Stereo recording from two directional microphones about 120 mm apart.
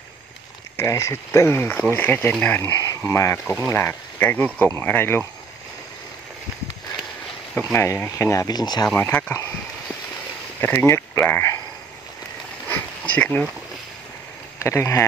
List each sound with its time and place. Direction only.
0.7 s speech: 25° left (ahead or behind)
7.5 s speech: 20° left (ahead or behind); by 8.8 s 35° left (ahead or behind)
8.8 s speech: 15° left (ahead or behind)
10.6 s speech: 20° left (ahead or behind)
12.6 s a sound: 15° left (ahead or behind)
14.6 s speech: 20° left (ahead or behind)